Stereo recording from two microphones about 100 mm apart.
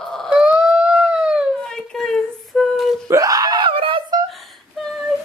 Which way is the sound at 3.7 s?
65° right (ahead or behind).